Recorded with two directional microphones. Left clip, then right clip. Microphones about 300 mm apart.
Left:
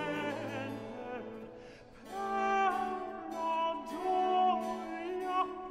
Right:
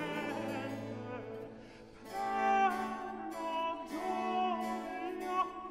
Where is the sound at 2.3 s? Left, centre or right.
Left.